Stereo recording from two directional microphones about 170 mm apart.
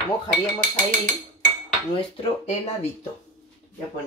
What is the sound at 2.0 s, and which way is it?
Speech, 40° left (ahead or behind).